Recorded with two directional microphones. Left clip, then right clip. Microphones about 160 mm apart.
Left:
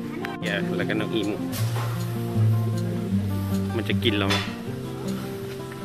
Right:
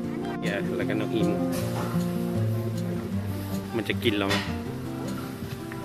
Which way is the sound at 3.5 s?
Centre (ahead or behind).